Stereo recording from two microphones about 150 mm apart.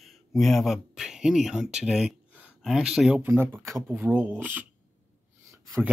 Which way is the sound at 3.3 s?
15° right (ahead or behind).